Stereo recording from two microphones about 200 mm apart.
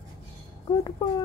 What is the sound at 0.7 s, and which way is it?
Speech, 20° left (ahead or behind).